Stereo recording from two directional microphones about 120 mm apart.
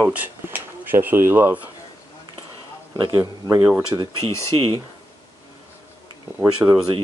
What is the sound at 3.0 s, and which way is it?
Speech, 30° right (ahead or behind).